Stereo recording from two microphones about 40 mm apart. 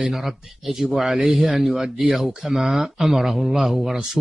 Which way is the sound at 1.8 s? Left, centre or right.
Centre.